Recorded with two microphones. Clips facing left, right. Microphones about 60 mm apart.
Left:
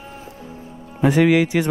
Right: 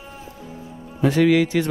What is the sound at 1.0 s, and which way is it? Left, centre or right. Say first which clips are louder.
Speech: left 1 dB; centre.